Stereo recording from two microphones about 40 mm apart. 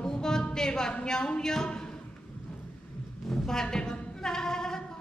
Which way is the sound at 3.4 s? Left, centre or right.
Centre.